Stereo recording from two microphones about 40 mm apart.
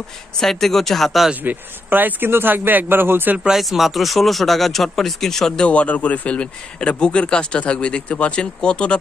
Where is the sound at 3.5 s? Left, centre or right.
Centre.